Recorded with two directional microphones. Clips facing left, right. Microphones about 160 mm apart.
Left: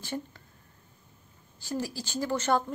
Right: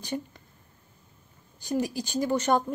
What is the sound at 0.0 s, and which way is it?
Speech, 15° right (ahead or behind).